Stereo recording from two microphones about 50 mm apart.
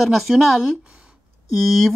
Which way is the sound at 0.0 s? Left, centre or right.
Centre.